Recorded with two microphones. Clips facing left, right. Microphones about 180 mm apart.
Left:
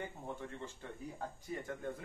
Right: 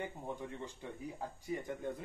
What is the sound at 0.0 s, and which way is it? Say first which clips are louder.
Speech: right 2 dB; 15° right (ahead or behind).